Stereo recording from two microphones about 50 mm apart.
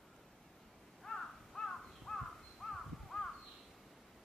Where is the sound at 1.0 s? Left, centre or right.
Centre.